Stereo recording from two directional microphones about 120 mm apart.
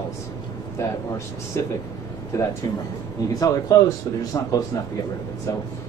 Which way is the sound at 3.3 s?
30° left (ahead or behind).